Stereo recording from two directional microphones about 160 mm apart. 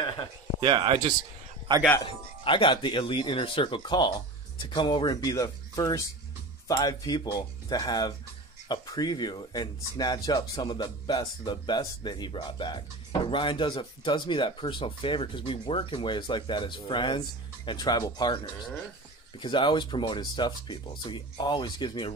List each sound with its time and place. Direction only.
0.6 s speech: 30° right (ahead or behind)
2.0 s speech: 30° left (ahead or behind)
19.4 s speech: 30° left (ahead or behind)